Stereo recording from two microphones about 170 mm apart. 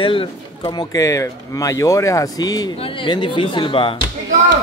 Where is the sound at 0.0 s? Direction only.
30° left (ahead or behind).